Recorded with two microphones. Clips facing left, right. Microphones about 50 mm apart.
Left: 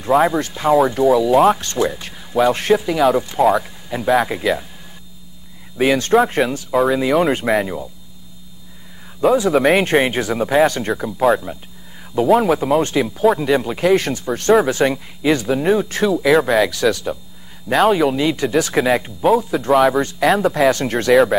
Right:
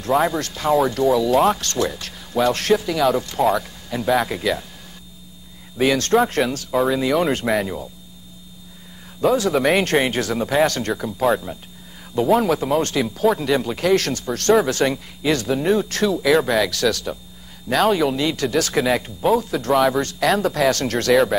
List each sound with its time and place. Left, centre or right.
0.3 s speech: centre
5.8 s speech: centre
6.7 s speech: centre
9.4 s speech: centre
16.6 s speech: centre
18.1 s speech: centre
20.0 s speech: centre
21.1 s speech: centre